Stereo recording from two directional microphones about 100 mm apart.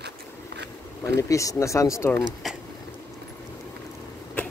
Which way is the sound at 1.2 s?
35° left (ahead or behind).